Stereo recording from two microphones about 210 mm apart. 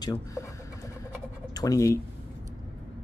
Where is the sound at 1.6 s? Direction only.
15° left (ahead or behind).